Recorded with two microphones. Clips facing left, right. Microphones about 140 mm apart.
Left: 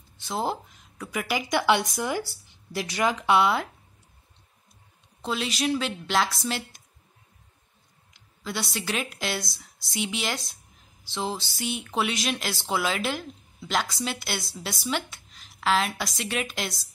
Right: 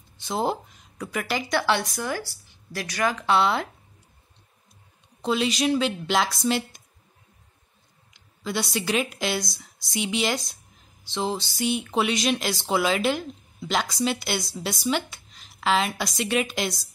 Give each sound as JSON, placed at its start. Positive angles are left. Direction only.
{"t": 0.2, "sound": "speech", "side_deg": 0}
{"t": 5.2, "sound": "speech", "side_deg": 0}
{"t": 8.1, "sound": "speech", "side_deg": 0}